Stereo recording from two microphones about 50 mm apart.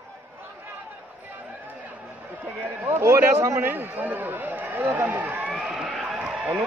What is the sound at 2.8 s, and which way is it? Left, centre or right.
A man's voice, right.